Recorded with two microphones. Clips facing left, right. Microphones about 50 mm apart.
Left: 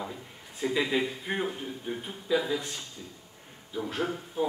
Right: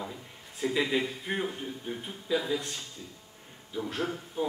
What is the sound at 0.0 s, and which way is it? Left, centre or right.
A man's voice, centre.